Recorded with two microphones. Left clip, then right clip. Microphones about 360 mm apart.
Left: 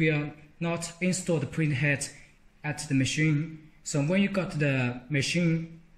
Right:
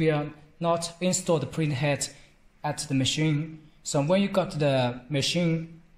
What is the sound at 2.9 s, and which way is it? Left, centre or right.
Speech, right.